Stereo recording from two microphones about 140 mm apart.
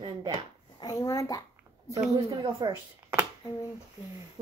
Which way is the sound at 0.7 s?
25° left (ahead or behind).